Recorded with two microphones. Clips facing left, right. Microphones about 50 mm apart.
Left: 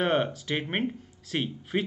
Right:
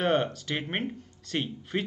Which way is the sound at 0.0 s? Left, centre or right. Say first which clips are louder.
Even; centre.